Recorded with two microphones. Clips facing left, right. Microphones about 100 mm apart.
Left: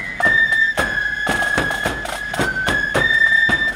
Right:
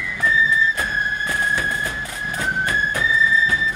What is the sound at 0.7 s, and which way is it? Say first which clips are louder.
Music: left 2 dB; 75° left (ahead or behind).